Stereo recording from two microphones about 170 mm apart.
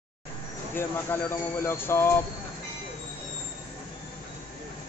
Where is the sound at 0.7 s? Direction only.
15° left (ahead or behind).